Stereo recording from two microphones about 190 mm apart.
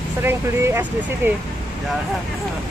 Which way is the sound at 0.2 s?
10° right (ahead or behind).